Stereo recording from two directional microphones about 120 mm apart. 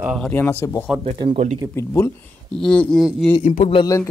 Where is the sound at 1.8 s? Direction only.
25° left (ahead or behind).